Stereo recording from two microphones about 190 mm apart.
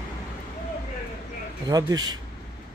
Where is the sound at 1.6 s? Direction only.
20° right (ahead or behind).